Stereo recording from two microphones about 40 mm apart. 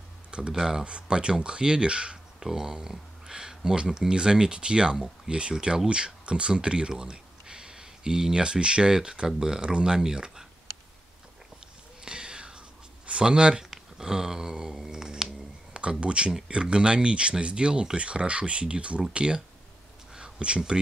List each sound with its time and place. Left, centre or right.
0.3 s speech: right
0.9 s speech: right
12.0 s writing: right
13.7 s a sound: centre
15.7 s speech: right